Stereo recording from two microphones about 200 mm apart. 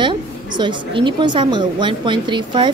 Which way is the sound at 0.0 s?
25° right (ahead or behind).